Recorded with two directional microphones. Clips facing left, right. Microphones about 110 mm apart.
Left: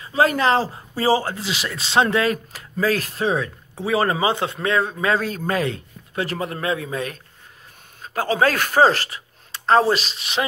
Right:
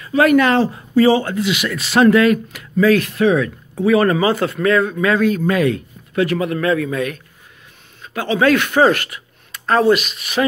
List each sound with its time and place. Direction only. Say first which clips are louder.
0.0 s speech: right 5 dB; 30° left (ahead or behind)